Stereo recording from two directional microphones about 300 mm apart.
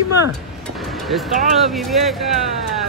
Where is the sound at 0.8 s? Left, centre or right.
Centre.